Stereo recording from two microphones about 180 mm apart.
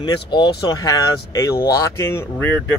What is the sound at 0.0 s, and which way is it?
Speech, 25° left (ahead or behind).